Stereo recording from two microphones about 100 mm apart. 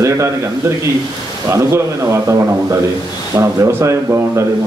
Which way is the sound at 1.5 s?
30° right (ahead or behind).